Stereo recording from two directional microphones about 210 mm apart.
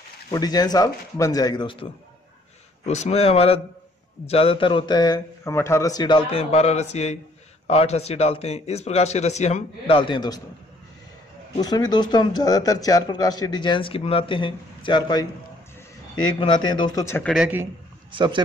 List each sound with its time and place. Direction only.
0.3 s speech: 20° left (ahead or behind)
2.9 s speech: 30° left (ahead or behind)
11.5 s speech: 20° left (ahead or behind)
16.3 s speech: 20° left (ahead or behind)
17.3 s a man's voice: 5° right (ahead or behind)
18.1 s a man's voice: 20° right (ahead or behind)